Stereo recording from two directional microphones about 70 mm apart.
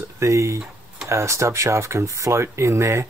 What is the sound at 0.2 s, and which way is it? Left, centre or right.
Speech, right.